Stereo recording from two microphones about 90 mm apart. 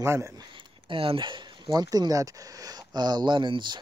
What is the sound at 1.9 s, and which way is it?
Speech, 45° right (ahead or behind).